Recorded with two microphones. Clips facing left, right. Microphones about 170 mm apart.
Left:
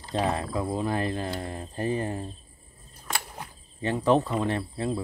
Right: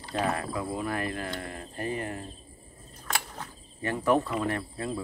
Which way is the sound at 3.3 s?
15° left (ahead or behind).